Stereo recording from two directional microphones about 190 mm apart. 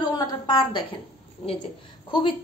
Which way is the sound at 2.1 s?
30° left (ahead or behind).